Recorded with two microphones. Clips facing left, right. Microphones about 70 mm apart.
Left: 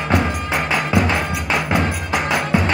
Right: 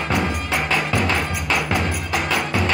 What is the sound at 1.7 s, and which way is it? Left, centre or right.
Music, left.